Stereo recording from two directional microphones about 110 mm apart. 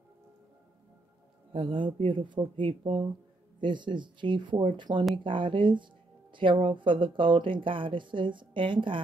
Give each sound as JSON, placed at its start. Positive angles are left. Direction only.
{"t": 1.5, "sound": "speech", "side_deg": -50}